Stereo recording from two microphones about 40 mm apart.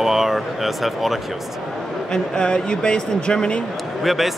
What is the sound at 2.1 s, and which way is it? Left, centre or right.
Speech, centre.